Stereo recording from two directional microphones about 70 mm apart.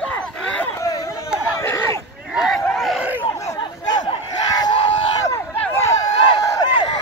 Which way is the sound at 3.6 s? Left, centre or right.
Left.